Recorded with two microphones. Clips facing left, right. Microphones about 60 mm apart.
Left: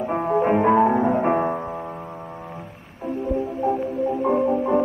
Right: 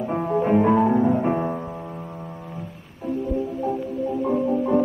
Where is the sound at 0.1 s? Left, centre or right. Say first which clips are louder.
Left 1 dB; left.